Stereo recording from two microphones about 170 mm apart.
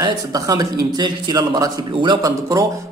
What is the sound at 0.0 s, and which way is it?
A man's voice, 20° right (ahead or behind).